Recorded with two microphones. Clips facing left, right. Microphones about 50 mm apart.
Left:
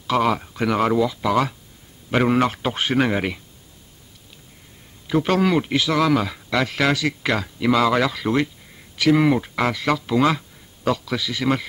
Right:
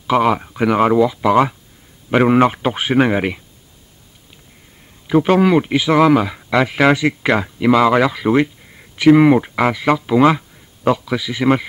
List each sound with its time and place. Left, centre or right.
0.0 s speech: centre
5.0 s speech: centre